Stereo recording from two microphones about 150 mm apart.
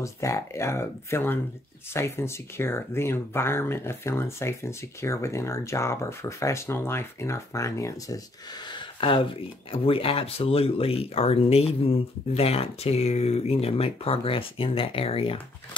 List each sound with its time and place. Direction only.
0.0 s speech: 20° left (ahead or behind); by 15.4 s 40° left (ahead or behind)